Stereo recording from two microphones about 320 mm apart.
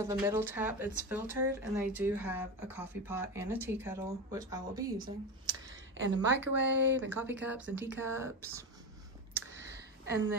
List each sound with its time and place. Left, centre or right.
0.0 s speech: centre
5.9 s speech: right
7.1 s speech: centre
9.3 s a sound: centre